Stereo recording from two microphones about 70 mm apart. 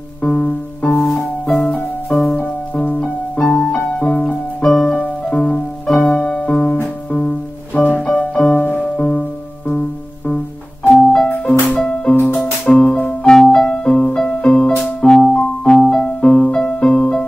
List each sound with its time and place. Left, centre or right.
0.2 s music: centre
0.9 s music: centre
2.3 s music: left
5.9 s music: centre
8.1 s piano: centre
8.5 s music: left
11.2 s music: left
11.8 s music: centre
12.8 s music: left
13.3 s music: centre